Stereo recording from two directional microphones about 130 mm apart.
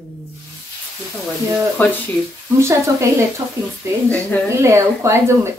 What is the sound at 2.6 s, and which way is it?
Speech, 20° right (ahead or behind).